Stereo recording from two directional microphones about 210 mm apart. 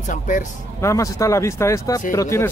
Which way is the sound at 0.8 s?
15° left (ahead or behind).